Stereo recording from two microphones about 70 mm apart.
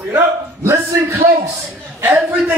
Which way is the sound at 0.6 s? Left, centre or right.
Right.